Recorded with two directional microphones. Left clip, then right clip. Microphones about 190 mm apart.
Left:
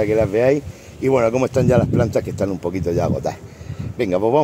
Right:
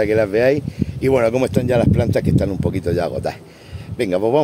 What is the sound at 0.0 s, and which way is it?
Speech, 10° right (ahead or behind).